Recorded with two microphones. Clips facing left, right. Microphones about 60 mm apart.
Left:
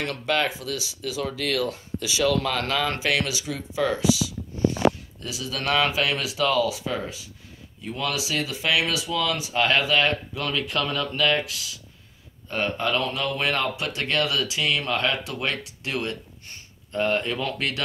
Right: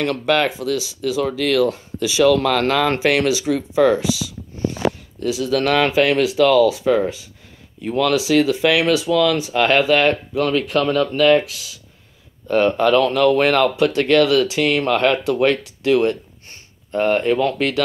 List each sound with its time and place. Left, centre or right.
0.0 s speech: right
2.2 s speech: right
3.4 s speech: right
5.3 s speech: right
7.8 s speech: right
12.4 s speech: right